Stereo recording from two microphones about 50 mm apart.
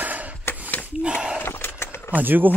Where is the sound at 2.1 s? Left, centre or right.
Right.